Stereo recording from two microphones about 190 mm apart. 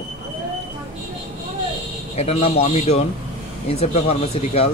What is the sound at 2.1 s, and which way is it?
Speech, 35° left (ahead or behind).